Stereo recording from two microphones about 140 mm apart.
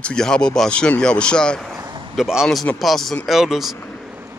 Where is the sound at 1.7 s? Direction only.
25° right (ahead or behind).